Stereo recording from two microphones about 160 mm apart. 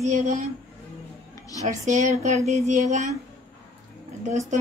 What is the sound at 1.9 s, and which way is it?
Speech, 50° right (ahead or behind).